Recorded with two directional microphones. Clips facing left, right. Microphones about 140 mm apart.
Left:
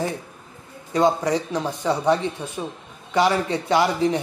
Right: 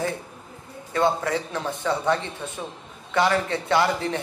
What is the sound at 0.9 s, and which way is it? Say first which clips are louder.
Speech: left 3 dB; 15° left (ahead or behind).